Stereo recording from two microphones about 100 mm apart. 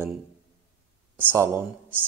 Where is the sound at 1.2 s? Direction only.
20° right (ahead or behind).